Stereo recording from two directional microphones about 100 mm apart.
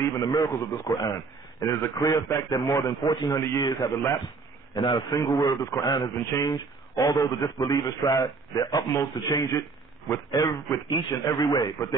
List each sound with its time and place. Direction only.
0.0 s a man's voice: 35° left (ahead or behind)
3.0 s a man's voice: 50° left (ahead or behind)
3.3 s a man's voice: 30° left (ahead or behind)
3.8 s a man's voice: 40° left (ahead or behind)